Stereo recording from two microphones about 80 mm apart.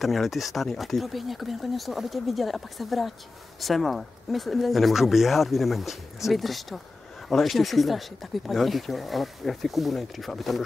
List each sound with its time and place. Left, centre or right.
0.0 s speech: centre